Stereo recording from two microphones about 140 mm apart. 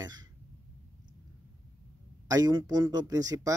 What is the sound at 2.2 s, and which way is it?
Speech, 25° right (ahead or behind).